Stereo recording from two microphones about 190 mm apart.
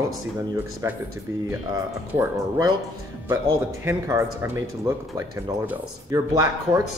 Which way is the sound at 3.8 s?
15° right (ahead or behind).